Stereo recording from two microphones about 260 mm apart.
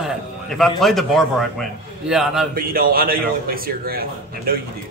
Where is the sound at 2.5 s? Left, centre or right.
Right.